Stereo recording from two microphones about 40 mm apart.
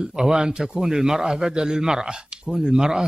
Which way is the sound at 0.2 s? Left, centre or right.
Centre.